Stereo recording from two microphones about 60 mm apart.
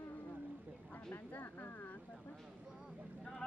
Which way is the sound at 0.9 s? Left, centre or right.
Left.